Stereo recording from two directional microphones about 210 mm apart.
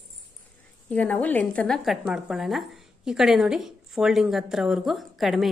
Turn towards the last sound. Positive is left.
turn(degrees=0)  # may be behind; listen again after turning